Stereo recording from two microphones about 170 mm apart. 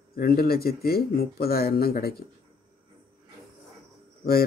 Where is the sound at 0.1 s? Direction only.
60° left (ahead or behind).